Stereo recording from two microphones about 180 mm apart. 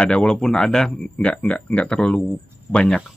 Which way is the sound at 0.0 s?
5° left (ahead or behind).